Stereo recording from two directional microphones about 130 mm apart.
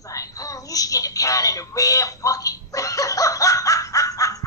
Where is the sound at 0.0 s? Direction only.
25° left (ahead or behind).